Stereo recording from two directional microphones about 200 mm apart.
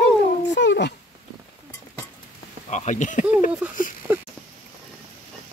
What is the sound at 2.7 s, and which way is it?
Speech, 35° left (ahead or behind).